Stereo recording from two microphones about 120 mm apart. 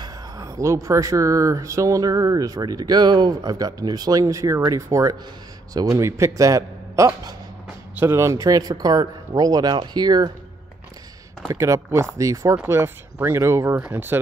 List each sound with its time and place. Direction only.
0.0 s speech: 30° right (ahead or behind)
11.5 s speech: 25° right (ahead or behind)